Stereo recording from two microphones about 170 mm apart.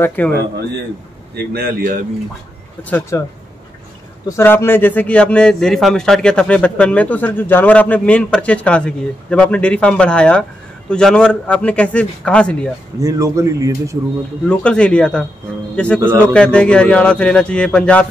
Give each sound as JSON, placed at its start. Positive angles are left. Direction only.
{"t": 0.0, "sound": "a man's voice", "side_deg": 10}
{"t": 1.3, "sound": "speech", "side_deg": -70}
{"t": 2.8, "sound": "a man's voice", "side_deg": 15}
{"t": 4.3, "sound": "a man's voice", "side_deg": 15}
{"t": 13.0, "sound": "a man's voice", "side_deg": -20}
{"t": 14.5, "sound": "a man's voice", "side_deg": 5}